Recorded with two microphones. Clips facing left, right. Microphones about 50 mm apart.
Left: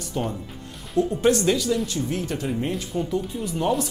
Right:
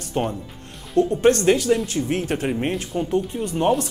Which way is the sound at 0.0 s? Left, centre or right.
Right.